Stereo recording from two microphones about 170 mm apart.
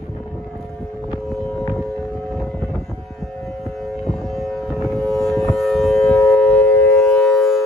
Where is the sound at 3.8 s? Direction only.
Centre (ahead or behind).